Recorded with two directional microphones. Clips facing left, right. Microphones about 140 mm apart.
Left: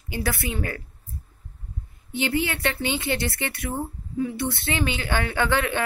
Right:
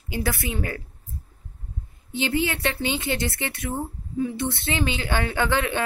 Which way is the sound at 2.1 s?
15° right (ahead or behind).